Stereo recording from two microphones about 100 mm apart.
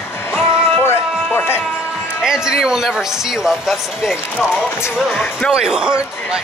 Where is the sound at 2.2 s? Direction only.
5° right (ahead or behind).